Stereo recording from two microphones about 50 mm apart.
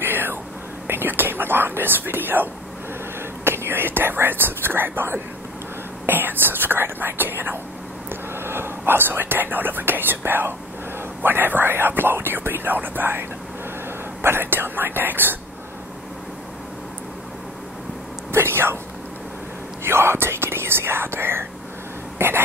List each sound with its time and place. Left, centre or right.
0.0 s whispering: right
0.8 s speech: right
18.3 s a sound: right
19.8 s speech: right